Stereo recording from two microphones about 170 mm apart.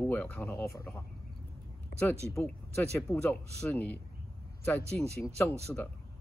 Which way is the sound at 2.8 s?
10° left (ahead or behind).